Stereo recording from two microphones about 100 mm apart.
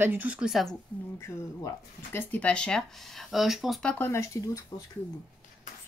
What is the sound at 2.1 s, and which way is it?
Speech, 15° left (ahead or behind).